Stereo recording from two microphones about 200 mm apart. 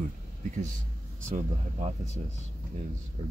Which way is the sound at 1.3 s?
35° right (ahead or behind).